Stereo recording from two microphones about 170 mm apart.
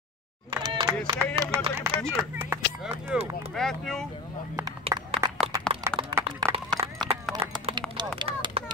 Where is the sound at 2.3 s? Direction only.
10° right (ahead or behind).